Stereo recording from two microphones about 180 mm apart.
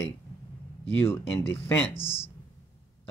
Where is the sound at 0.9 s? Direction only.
15° left (ahead or behind).